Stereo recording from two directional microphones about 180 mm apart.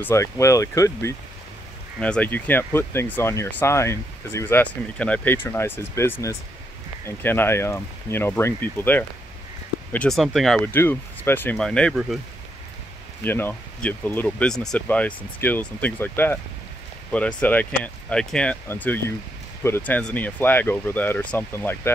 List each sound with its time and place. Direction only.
0.0 s speech: 15° left (ahead or behind)
2.0 s speech: 5° left (ahead or behind)
13.2 s speech: 10° left (ahead or behind)